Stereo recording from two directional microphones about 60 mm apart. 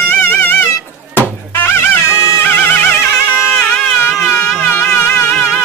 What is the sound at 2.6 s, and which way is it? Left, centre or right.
Music, left.